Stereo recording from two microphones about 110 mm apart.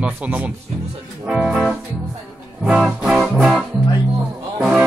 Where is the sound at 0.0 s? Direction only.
15° right (ahead or behind).